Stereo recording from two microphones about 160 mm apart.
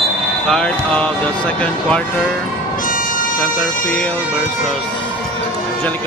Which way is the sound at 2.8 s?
60° left (ahead or behind).